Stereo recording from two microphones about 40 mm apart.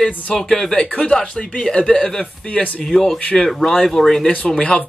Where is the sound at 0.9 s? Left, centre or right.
Left.